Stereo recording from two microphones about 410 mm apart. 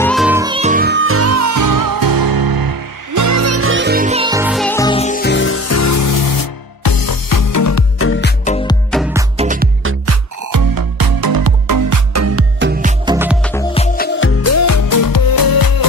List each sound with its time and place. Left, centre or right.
0.0 s music: centre; by 8.5 s left
8.9 s music: centre
9.4 s music: centre
10.5 s music: right
13.0 s music: centre
13.9 s music: left